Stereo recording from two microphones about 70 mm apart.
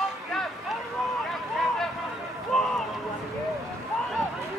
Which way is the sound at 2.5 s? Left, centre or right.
Centre.